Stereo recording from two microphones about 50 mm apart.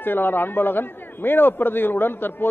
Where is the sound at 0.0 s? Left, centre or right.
Left.